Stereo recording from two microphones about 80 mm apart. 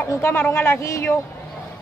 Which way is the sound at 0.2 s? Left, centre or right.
Left.